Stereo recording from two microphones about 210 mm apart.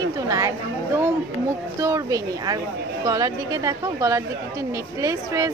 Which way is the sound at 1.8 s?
15° right (ahead or behind).